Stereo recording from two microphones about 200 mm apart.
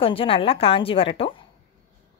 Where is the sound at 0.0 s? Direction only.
25° left (ahead or behind).